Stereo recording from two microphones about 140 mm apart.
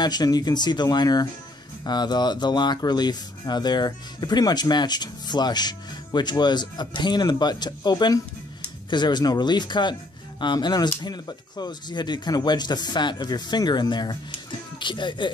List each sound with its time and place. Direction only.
0.0 s speech: 30° left (ahead or behind)